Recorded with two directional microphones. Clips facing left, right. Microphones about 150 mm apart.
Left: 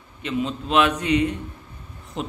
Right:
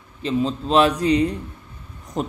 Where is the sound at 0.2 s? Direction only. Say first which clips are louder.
Right 4 dB; 35° right (ahead or behind).